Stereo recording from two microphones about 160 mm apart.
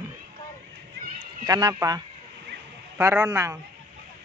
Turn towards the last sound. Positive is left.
turn(degrees=-15)  # may be behind; listen again after turning